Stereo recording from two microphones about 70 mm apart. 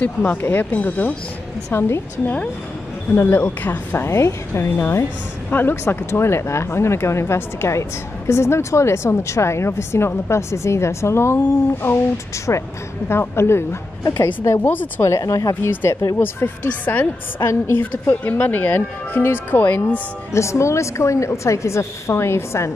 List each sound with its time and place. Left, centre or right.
0.2 s a woman's voice: left
4.1 s speech: left
11.8 s a woman's voice: left
14.0 s a woman's voice: left
15.7 s a woman's voice: left
17.5 s a woman's voice: left
20.3 s a woman's voice: left